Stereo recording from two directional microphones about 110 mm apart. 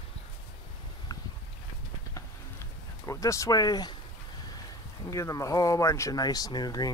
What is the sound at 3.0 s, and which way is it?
Speech, 30° left (ahead or behind).